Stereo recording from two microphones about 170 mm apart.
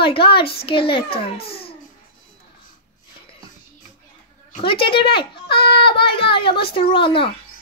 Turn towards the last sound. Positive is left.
turn(degrees=30)  # may be behind; listen again after turning